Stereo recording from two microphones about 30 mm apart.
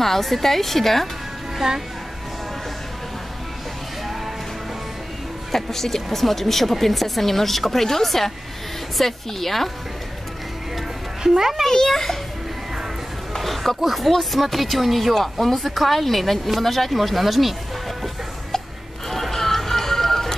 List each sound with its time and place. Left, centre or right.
0.0 s speech: centre
1.6 s a child's voice: centre
5.5 s speech: centre
11.2 s a child's voice: centre
11.7 s speech: centre
13.4 s music: centre
13.8 s speech: centre
19.0 s music: centre